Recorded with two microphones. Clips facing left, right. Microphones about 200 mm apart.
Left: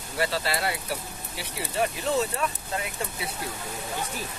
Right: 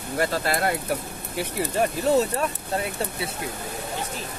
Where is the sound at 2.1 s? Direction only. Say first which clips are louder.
Right 5 dB; 40° right (ahead or behind).